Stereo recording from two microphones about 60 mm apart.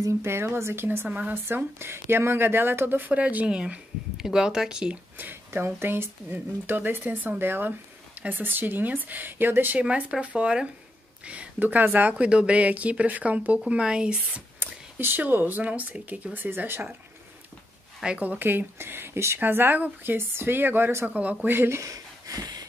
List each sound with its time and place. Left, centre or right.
0.2 s speech: right; by 4.9 s centre
5.1 s a sound: right
5.8 s speech: right
9.8 s speech: right
12.3 s speech: centre
15.0 s speech: right
16.3 s speech: right
18.0 s speech: right
19.4 s speech: right
21.1 s speech: right
21.5 s speech: right
21.8 s a sound: right